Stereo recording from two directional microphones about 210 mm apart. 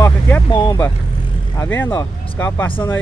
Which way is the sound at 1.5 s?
10° left (ahead or behind).